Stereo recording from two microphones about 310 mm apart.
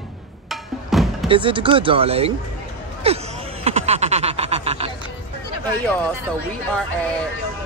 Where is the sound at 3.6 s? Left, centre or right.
Centre.